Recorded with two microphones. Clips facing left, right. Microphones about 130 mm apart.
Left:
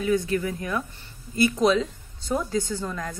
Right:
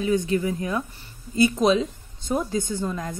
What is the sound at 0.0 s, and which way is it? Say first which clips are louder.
Speech: right 1 dB; 20° right (ahead or behind).